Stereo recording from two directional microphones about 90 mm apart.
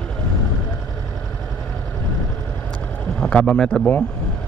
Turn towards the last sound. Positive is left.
turn(degrees=10)  # may be behind; listen again after turning